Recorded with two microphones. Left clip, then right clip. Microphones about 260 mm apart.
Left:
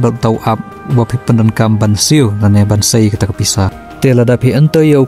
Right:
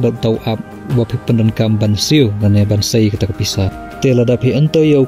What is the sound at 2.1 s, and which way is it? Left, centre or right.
Speech, left.